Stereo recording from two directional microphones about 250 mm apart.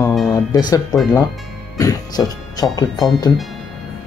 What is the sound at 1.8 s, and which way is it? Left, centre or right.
Speech, centre.